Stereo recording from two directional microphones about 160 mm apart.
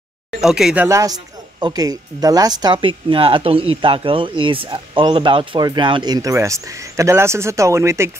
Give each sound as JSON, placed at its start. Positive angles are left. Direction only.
{"t": 0.4, "sound": "speech", "side_deg": -5}
{"t": 0.8, "sound": "speech", "side_deg": -20}